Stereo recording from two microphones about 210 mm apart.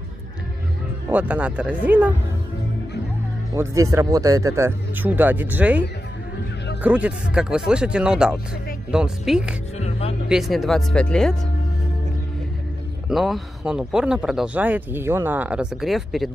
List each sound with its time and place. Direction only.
1.0 s speech: 5° right (ahead or behind)
3.5 s speech: 15° right (ahead or behind)
9.8 s music: 30° left (ahead or behind)
10.2 s speech: centre (ahead or behind)
13.1 s speech: centre (ahead or behind)